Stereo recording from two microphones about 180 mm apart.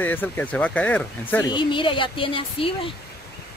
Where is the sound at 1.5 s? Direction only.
25° left (ahead or behind).